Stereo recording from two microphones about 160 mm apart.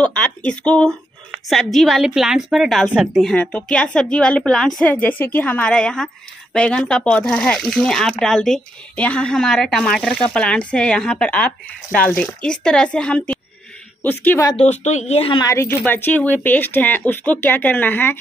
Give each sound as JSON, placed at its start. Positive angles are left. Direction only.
{"t": 0.0, "sound": "a sound", "side_deg": 5}
{"t": 0.5, "sound": "speech", "side_deg": 5}
{"t": 14.6, "sound": "speech", "side_deg": 45}
{"t": 15.3, "sound": "speech", "side_deg": 20}